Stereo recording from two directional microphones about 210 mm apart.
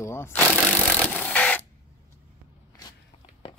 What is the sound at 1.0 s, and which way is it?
Printer, 5° left (ahead or behind).